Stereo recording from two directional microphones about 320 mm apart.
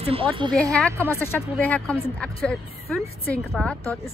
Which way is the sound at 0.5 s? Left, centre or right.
Centre.